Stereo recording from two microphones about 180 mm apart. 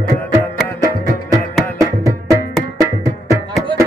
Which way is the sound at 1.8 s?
15° right (ahead or behind).